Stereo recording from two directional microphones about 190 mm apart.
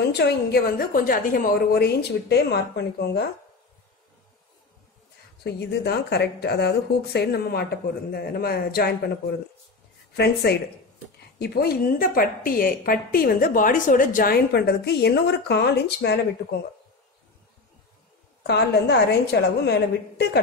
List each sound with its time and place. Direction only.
0.2 s a woman's voice: 55° left (ahead or behind)
5.4 s a woman's voice: 65° left (ahead or behind)
10.1 s a woman's voice: 60° left (ahead or behind)
18.4 s a woman's voice: 60° left (ahead or behind)